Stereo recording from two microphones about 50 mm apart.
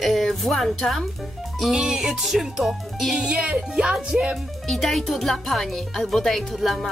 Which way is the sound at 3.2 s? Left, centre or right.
Centre.